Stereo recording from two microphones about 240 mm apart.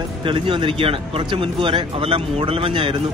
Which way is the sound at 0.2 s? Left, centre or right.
Centre.